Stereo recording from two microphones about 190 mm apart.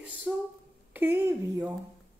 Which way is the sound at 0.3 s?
10° right (ahead or behind).